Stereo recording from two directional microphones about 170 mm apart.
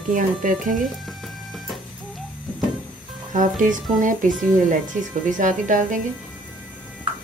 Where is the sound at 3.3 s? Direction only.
50° right (ahead or behind).